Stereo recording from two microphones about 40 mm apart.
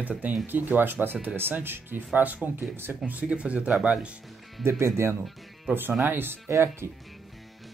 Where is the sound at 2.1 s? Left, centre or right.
Right.